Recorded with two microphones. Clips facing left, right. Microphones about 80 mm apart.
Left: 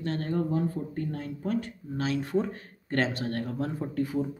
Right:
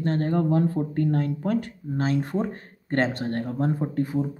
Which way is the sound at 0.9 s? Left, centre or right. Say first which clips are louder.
Right 9 dB; right.